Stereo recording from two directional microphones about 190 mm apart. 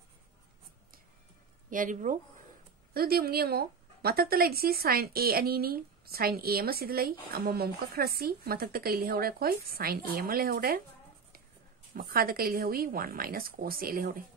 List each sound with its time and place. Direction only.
1.7 s speech: 45° right (ahead or behind)
11.9 s speech: 50° right (ahead or behind)